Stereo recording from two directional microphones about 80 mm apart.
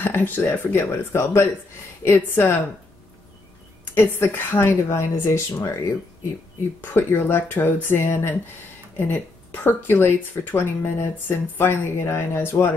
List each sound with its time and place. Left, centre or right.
0.0 s speech: left
0.5 s speech: left
3.9 s speech: left
6.8 s speech: left